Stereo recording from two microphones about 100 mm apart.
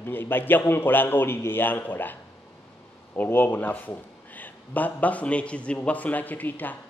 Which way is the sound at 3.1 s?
20° left (ahead or behind).